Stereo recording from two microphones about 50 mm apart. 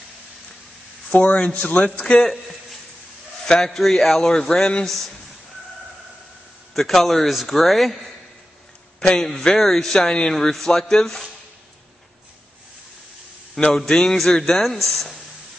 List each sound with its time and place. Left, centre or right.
1.1 s speech: left
3.4 s speech: centre
6.7 s a man's voice: centre
9.0 s speech: centre
13.6 s a man's voice: centre